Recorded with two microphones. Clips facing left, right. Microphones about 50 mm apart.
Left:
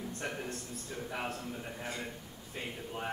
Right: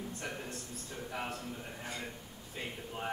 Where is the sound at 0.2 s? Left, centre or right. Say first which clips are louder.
Left 3 dB; left.